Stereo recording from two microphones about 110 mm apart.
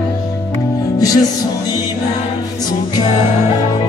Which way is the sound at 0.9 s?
35° left (ahead or behind).